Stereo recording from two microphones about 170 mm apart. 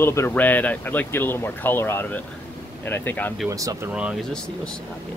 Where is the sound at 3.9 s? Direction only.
5° right (ahead or behind).